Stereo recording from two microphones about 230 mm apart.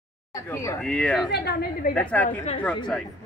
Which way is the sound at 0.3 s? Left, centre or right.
Centre.